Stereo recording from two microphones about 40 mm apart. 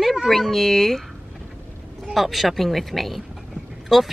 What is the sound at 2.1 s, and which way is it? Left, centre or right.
Speech, centre.